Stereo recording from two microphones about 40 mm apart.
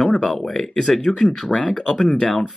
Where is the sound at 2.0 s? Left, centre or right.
Left.